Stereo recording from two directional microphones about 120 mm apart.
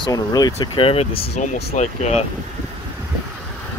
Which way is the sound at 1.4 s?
70° left (ahead or behind).